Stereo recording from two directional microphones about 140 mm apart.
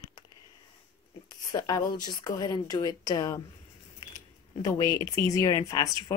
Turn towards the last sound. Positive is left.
turn(degrees=25)  # may be behind; listen again after turning